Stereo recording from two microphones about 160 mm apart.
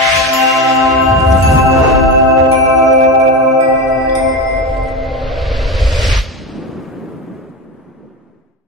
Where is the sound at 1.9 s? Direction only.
Centre (ahead or behind).